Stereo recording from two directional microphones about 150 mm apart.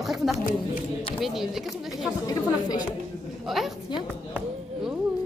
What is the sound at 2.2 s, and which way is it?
Speech, 25° left (ahead or behind).